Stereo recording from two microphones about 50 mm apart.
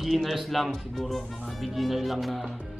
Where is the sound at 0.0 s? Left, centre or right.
Centre.